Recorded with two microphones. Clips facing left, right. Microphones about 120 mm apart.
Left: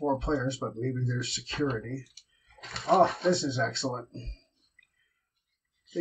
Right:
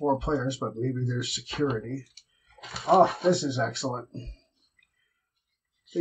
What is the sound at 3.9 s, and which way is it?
Speech, 25° right (ahead or behind).